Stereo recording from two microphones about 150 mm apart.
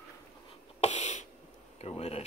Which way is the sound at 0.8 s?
50° left (ahead or behind).